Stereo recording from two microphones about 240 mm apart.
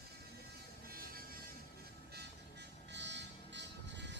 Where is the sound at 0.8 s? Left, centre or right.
Right.